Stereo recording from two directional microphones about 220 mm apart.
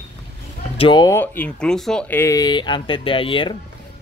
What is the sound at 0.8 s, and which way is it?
Speech, 20° left (ahead or behind).